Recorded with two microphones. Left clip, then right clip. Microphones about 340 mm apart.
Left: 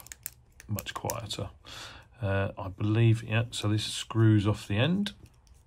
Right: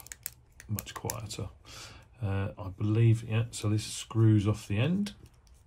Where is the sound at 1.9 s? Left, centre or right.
Left.